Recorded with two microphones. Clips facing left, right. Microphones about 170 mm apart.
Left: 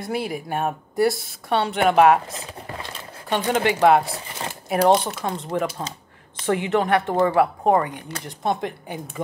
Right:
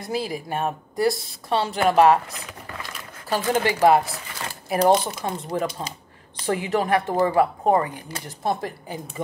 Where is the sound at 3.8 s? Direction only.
Centre (ahead or behind).